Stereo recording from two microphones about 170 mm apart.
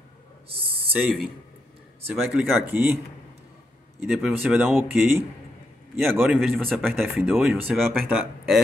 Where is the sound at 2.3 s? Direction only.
10° right (ahead or behind).